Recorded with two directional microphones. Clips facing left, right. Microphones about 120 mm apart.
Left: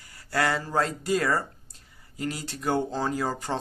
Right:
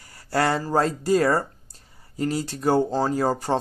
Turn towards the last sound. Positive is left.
turn(degrees=-40)  # may be behind; listen again after turning